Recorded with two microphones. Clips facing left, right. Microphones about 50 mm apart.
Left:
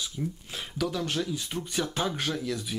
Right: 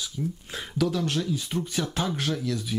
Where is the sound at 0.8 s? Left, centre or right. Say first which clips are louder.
Right 4 dB; centre.